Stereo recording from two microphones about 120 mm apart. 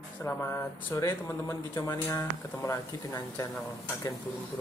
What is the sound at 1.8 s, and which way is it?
Speech, 25° left (ahead or behind).